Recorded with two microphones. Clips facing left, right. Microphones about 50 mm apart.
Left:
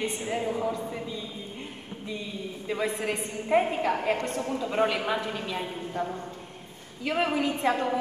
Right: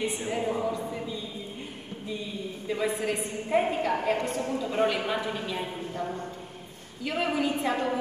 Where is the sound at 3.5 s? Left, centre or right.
Centre.